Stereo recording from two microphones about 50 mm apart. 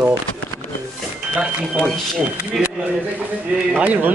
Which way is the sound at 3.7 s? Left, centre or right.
Right.